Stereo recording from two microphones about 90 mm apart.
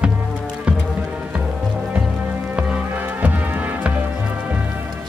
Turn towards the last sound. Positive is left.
turn(degrees=-15)  # may be behind; listen again after turning